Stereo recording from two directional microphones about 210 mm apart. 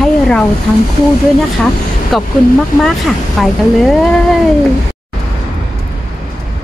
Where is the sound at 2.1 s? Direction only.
Centre (ahead or behind).